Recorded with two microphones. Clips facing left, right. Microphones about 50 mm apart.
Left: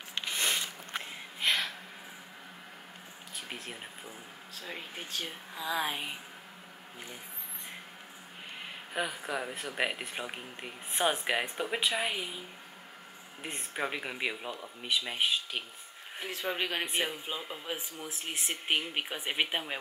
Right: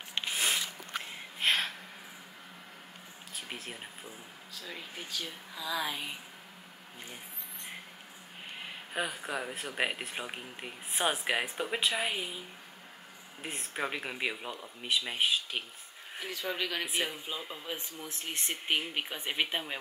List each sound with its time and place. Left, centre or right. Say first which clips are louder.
0.3 s biting: even; centre
1.4 s a sound: right 1 dB; centre
3.3 s speech: even; centre
4.6 s a woman's voice: left 1 dB; left
8.9 s speech: left 1 dB; centre
16.3 s speech: left 2 dB; left
16.8 s speech: left 1 dB; centre